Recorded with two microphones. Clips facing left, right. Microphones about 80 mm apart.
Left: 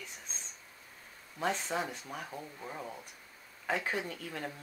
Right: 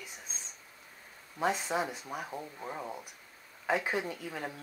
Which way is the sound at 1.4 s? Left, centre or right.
Centre.